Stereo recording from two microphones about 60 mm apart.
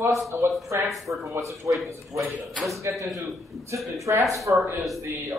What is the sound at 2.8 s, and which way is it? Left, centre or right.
Speech, right.